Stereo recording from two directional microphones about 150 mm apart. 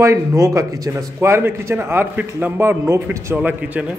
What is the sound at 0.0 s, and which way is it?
A man's voice, 20° right (ahead or behind).